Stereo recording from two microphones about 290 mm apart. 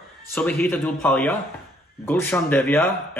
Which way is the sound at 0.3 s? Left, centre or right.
Centre.